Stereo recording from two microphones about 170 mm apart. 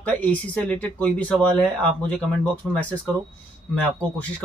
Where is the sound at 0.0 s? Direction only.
10° left (ahead or behind).